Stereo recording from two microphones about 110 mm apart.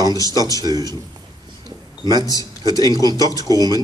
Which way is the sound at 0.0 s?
35° right (ahead or behind).